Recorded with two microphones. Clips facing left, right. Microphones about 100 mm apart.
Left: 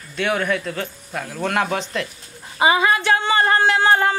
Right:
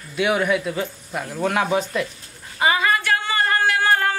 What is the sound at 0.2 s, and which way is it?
Speech, 10° right (ahead or behind).